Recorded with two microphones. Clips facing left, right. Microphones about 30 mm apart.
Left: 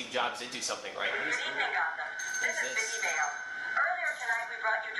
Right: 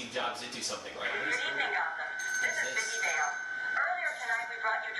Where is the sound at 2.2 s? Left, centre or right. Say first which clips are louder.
Right 1 dB; centre.